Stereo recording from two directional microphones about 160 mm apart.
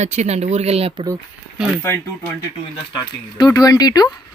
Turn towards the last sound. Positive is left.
turn(degrees=25)  # may be behind; listen again after turning